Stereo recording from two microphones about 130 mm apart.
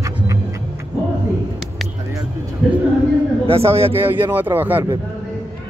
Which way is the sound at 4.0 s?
15° right (ahead or behind).